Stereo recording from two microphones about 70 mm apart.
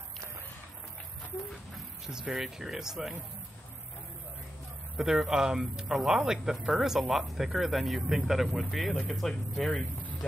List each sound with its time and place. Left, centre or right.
1.7 s speech: centre
4.9 s speech: centre
9.7 s speech: left